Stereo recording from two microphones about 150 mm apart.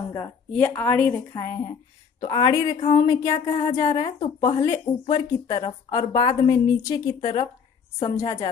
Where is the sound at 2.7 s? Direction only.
45° left (ahead or behind).